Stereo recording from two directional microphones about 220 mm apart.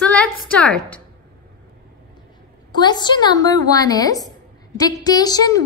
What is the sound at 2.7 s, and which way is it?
A woman's voice, 20° left (ahead or behind).